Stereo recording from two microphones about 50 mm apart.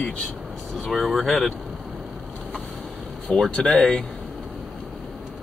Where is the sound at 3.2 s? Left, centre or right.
Centre.